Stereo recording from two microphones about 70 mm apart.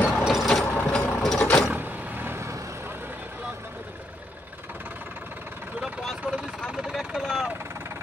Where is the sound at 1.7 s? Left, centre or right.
Right.